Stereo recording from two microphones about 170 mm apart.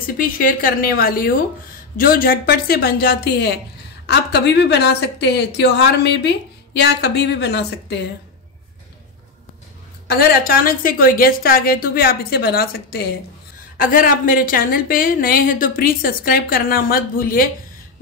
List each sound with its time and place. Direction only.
0.0 s a woman's voice: 55° left (ahead or behind)
4.0 s a woman's voice: 85° left
10.0 s a woman's voice: 60° left (ahead or behind)
13.7 s a woman's voice: 55° left (ahead or behind)